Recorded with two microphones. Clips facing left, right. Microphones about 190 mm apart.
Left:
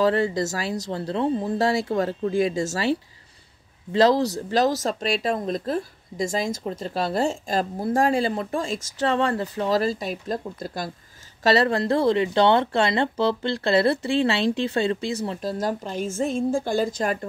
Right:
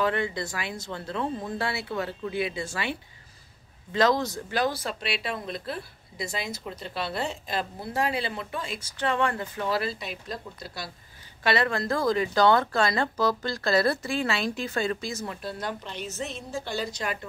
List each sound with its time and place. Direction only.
0.0 s speech: 35° left (ahead or behind)
11.4 s speech: 35° left (ahead or behind)
15.5 s a woman's voice: 45° left (ahead or behind)